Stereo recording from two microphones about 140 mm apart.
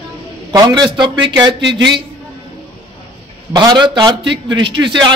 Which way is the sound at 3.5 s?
30° right (ahead or behind).